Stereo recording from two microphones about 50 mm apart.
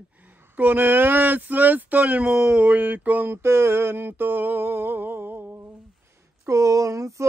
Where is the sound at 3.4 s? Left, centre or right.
Right.